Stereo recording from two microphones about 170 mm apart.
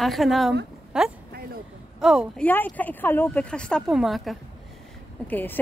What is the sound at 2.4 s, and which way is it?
Speech, 10° left (ahead or behind).